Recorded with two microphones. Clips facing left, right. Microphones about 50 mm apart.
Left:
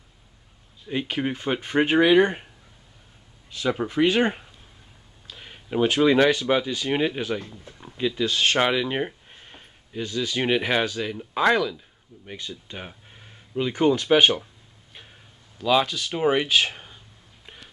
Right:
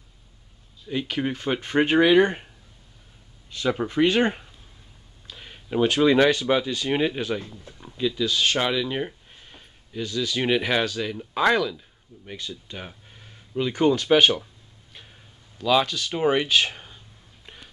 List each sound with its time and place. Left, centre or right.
0.8 s speech: left
1.2 s speech: centre
7.7 s a sound: centre
8.3 s speech: left; by 11.8 s centre
12.4 s a sound: left
16.1 s speech: centre